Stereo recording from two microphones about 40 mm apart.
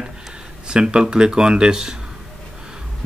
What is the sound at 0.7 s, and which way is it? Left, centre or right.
Speech, centre.